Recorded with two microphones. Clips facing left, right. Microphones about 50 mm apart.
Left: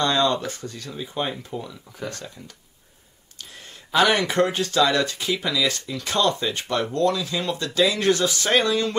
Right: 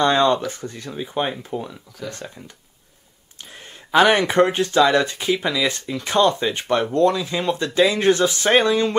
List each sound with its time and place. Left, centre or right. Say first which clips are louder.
0.0 s speech: right 4 dB; right